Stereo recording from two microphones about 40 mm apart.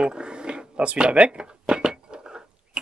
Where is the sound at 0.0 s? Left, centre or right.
Right.